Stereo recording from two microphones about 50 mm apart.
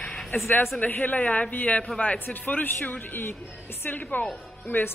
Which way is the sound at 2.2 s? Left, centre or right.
Left.